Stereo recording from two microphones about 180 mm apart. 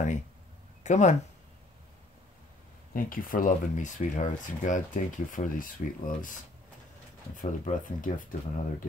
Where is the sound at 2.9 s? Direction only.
50° left (ahead or behind).